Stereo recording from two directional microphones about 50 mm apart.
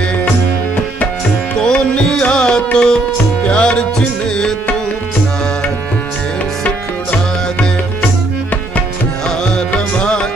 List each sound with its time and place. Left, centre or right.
1.6 s music: centre